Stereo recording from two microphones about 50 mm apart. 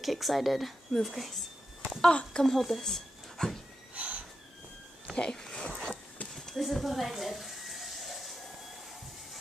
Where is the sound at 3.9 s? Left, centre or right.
Right.